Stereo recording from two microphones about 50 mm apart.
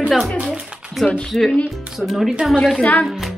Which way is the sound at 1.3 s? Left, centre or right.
Centre.